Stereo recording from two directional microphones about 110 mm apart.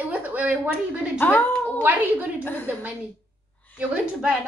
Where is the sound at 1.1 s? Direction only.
20° left (ahead or behind).